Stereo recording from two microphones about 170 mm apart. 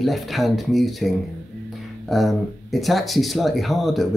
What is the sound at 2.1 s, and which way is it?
Speech, centre (ahead or behind).